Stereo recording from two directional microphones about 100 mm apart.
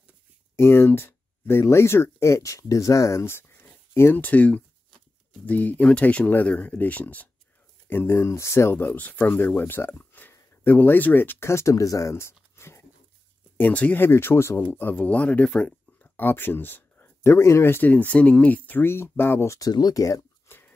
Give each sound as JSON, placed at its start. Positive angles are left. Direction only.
{"t": 0.6, "sound": "speech", "side_deg": 25}
{"t": 19.7, "sound": "speech", "side_deg": 40}
{"t": 20.4, "sound": "chopping", "side_deg": 20}